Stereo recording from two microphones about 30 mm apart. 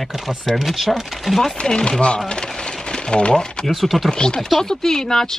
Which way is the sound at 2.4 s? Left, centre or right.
Left.